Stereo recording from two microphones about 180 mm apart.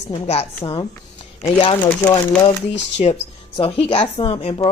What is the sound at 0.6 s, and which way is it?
Speech, 25° left (ahead or behind).